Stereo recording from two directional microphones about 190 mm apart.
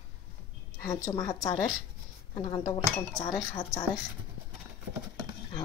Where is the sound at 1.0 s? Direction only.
20° left (ahead or behind).